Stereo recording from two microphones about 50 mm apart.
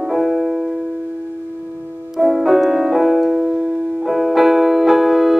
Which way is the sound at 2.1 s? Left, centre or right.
Centre.